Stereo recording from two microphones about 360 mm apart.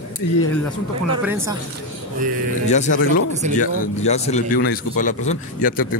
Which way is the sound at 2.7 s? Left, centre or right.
Centre.